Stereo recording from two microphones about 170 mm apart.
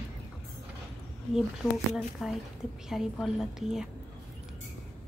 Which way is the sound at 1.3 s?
Centre (ahead or behind).